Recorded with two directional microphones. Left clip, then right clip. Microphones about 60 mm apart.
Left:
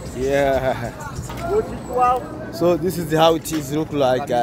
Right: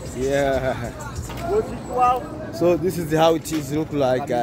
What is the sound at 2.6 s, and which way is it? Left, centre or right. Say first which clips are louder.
Speech: left 1 dB; right.